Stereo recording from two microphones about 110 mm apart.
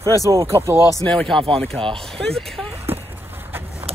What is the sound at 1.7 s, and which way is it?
Speech, 50° right (ahead or behind).